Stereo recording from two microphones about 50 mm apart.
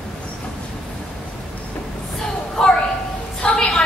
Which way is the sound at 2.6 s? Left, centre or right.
Centre.